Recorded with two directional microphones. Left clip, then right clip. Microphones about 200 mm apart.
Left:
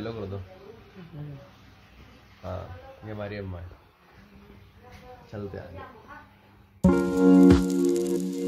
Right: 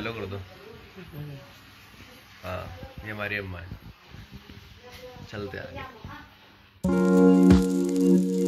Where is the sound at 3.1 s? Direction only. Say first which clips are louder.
Right 5 dB; 15° left (ahead or behind).